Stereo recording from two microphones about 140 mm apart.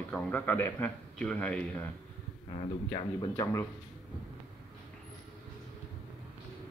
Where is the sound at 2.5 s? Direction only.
35° left (ahead or behind).